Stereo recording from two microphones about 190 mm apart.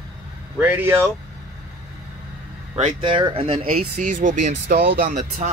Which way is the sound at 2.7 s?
30° right (ahead or behind).